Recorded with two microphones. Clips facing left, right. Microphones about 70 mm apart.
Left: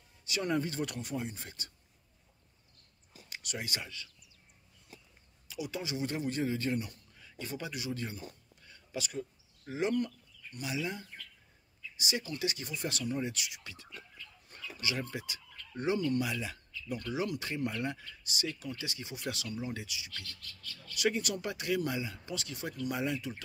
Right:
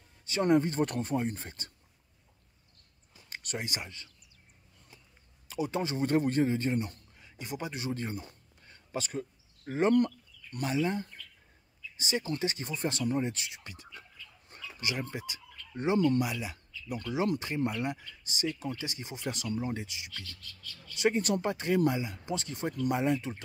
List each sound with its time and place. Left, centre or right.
0.2 s speech: right
3.3 s a sound: right
3.5 s speech: right
5.5 s speech: right
7.2 s a sound: right
7.7 s speech: right
8.6 s a sound: right
9.7 s speech: right
10.7 s speech: right